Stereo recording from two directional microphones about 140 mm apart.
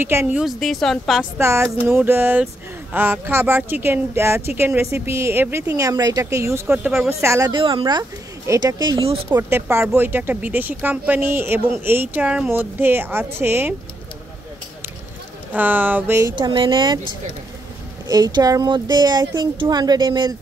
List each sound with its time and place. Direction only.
0.0 s speech: 15° right (ahead or behind)
0.4 s a woman's voice: centre (ahead or behind)
1.4 s speech: 20° right (ahead or behind)
7.5 s speech: 35° right (ahead or behind)
9.3 s speech: 15° right (ahead or behind)
15.5 s speech: 10° right (ahead or behind)
16.3 s speech: 35° right (ahead or behind)
18.1 s speech: 25° right (ahead or behind)